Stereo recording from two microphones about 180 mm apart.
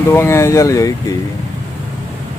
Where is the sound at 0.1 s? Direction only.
15° left (ahead or behind).